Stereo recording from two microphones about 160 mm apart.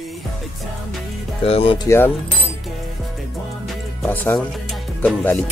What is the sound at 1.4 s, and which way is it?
Speech, 35° left (ahead or behind).